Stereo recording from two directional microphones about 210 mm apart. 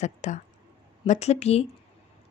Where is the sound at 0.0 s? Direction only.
35° left (ahead or behind).